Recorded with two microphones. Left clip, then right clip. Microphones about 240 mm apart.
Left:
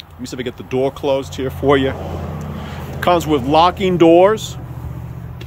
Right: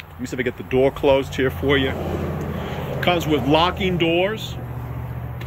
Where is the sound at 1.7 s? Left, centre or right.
Centre.